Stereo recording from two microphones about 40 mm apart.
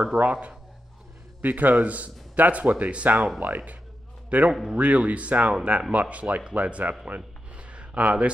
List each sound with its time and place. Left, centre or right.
0.2 s speech: right
1.4 s speech: right
3.3 s speech: right
4.3 s speech: right
7.2 s a sound: right